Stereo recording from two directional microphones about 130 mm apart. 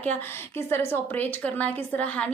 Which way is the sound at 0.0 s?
15° left (ahead or behind).